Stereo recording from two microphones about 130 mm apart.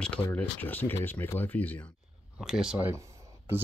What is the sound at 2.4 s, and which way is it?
Speech, centre (ahead or behind).